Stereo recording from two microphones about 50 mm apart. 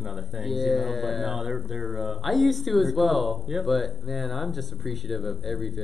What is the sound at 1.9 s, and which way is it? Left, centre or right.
Speech, right.